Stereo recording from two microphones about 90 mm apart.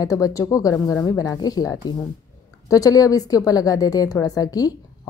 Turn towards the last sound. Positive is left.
turn(degrees=45)  # may be behind; listen again after turning